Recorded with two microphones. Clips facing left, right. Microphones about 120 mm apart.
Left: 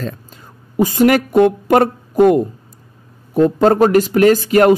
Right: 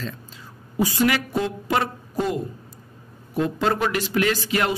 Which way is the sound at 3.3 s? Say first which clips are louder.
Left 11 dB; 45° left (ahead or behind).